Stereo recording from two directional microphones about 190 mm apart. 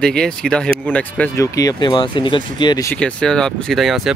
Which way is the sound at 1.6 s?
20° left (ahead or behind).